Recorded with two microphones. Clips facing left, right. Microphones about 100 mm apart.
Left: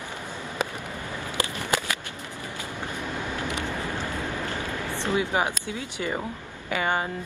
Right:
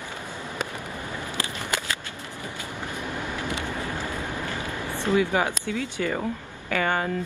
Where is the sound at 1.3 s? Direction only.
20° left (ahead or behind).